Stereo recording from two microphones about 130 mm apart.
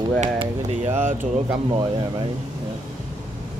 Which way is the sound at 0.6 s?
60° right (ahead or behind).